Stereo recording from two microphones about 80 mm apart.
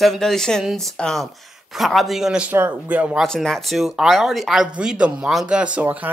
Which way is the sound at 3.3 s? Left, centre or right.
Centre.